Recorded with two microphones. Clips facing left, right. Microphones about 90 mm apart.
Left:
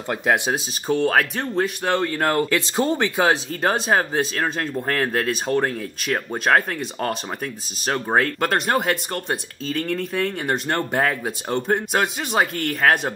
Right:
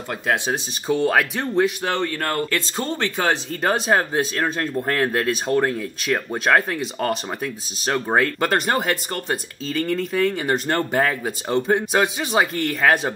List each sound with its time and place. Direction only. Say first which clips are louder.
0.5 s speech: even; centre (ahead or behind)
2.1 s speech: left 3 dB; 15° left (ahead or behind)
3.6 s speech: even; centre (ahead or behind)